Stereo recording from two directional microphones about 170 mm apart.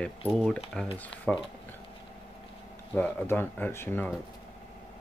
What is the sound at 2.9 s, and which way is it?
Speech, 10° left (ahead or behind).